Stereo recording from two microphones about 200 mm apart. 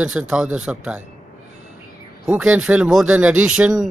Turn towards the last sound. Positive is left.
turn(degrees=-5)  # may be behind; listen again after turning